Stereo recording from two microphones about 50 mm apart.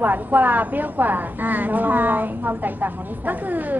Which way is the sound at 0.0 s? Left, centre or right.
Right.